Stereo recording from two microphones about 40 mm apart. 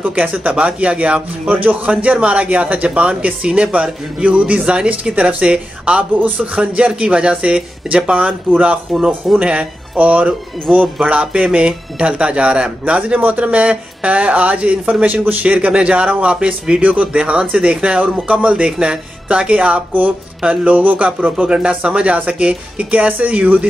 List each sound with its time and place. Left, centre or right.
0.1 s a man's voice: right
8.9 s speech: centre
9.4 s speech: right
10.7 s speech: centre
11.1 s a man's voice: right
16.8 s speech: right
17.2 s a man's voice: right
20.4 s speech: right
21.0 s a man's voice: right